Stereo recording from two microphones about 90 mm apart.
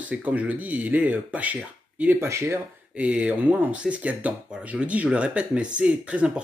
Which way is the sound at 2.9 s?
15° right (ahead or behind).